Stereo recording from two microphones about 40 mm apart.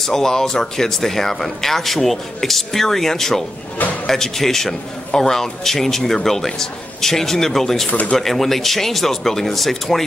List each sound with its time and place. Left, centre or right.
0.0 s a man's voice: centre